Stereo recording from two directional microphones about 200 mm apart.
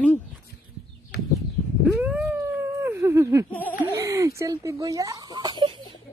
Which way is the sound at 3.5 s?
10° left (ahead or behind).